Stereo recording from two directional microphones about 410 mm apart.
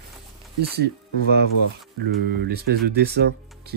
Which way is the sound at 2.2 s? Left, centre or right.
Right.